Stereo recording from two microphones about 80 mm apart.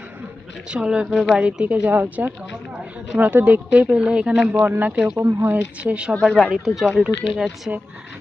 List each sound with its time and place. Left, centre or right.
0.7 s a woman's voice: centre
4.6 s speech: right
5.1 s speech: right
6.2 s speech: centre